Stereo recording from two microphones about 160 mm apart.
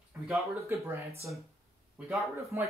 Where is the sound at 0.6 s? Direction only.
15° right (ahead or behind).